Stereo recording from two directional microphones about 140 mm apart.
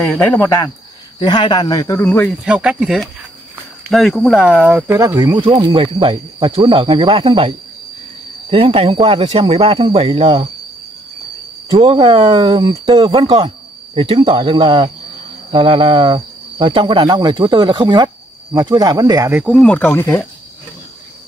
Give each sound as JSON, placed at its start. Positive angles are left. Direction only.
{"t": 0.0, "sound": "speech", "side_deg": 5}
{"t": 1.2, "sound": "speech", "side_deg": 30}
{"t": 2.4, "sound": "speech", "side_deg": -5}
{"t": 4.9, "sound": "speech", "side_deg": -25}
{"t": 11.8, "sound": "speech", "side_deg": -35}
{"t": 19.4, "sound": "speech", "side_deg": 5}